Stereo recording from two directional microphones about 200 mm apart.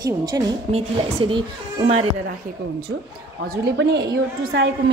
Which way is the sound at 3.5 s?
55° right (ahead or behind).